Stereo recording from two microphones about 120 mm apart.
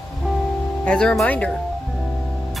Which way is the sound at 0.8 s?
10° left (ahead or behind).